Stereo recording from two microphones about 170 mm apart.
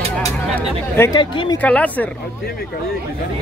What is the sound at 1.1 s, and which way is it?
Speech, 25° left (ahead or behind).